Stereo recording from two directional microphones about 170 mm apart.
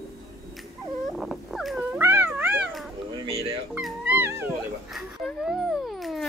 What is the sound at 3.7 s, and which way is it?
Music, 10° right (ahead or behind).